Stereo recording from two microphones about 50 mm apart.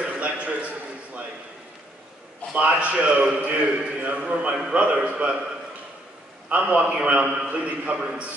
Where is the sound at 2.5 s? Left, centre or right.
Right.